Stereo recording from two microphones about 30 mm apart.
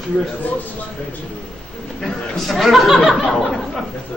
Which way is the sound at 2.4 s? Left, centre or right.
Centre.